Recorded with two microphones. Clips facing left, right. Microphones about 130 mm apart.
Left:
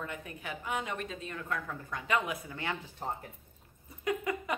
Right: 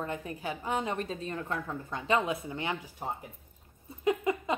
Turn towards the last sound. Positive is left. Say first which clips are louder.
# right 4 dB
turn(degrees=-25)  # may be behind; listen again after turning